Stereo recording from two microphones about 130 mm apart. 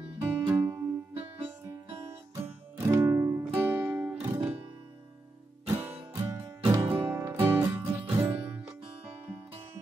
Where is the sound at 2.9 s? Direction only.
20° right (ahead or behind).